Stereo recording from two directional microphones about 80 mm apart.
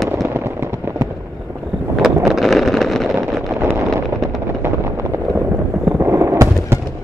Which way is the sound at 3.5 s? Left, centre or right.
Right.